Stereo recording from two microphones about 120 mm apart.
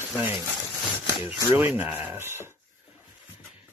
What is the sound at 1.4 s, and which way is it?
Speech, 15° right (ahead or behind).